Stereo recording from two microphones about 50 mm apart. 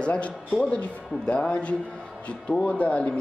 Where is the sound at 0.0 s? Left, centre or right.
Left.